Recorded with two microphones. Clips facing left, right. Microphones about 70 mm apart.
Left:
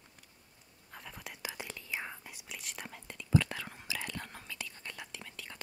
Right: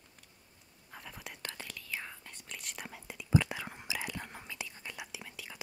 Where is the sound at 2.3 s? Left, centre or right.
Centre.